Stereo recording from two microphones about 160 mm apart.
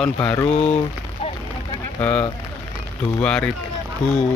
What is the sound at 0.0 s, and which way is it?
Speech, 5° left (ahead or behind).